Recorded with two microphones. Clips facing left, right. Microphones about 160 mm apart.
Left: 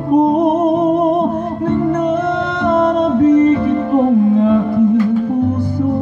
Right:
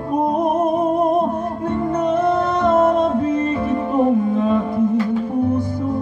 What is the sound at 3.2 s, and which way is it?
Music, 65° left (ahead or behind).